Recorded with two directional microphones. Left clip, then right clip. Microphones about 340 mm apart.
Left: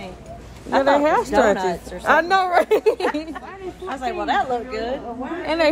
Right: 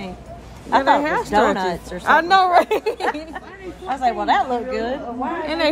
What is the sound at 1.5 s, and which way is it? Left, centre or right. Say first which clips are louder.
Speech: left 1 dB; right.